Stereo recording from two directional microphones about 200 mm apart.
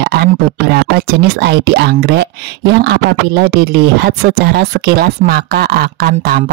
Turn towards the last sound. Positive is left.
turn(degrees=-50)  # may be behind; listen again after turning